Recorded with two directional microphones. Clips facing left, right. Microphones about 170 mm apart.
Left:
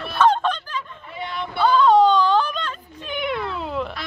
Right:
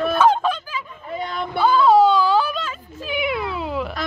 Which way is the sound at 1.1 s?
45° right (ahead or behind).